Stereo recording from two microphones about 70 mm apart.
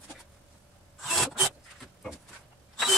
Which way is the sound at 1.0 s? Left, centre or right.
Centre.